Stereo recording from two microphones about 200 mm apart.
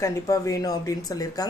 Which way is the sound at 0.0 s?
15° left (ahead or behind).